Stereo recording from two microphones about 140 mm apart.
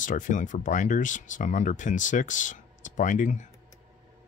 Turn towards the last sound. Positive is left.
turn(degrees=65)  # may be behind; listen again after turning